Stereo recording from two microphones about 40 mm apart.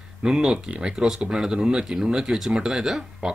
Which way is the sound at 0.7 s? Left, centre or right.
Right.